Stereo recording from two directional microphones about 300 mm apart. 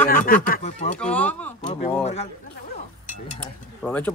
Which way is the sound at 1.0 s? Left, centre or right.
Centre.